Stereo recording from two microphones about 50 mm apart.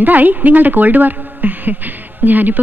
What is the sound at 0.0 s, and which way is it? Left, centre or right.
A woman's voice, right.